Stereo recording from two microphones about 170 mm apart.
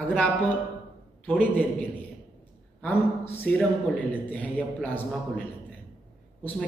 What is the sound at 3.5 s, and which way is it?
A man's voice, 10° left (ahead or behind).